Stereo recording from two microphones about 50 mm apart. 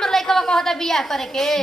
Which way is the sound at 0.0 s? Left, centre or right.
Centre.